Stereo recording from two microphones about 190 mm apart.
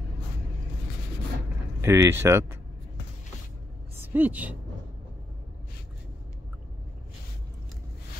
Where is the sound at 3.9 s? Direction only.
10° right (ahead or behind).